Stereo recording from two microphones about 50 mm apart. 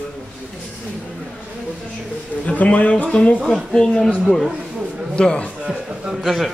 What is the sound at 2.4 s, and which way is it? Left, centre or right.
Speech, left.